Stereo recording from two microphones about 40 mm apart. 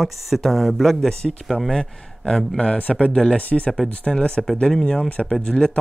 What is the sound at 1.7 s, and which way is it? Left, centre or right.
Speech, centre.